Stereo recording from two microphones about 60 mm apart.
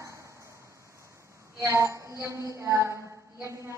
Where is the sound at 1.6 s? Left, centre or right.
Right.